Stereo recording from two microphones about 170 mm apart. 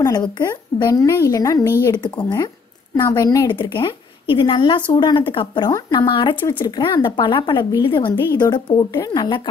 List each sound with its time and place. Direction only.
0.0 s a woman's voice: 20° left (ahead or behind)